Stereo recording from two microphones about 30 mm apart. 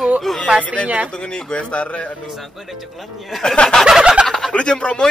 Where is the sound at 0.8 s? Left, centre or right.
Right.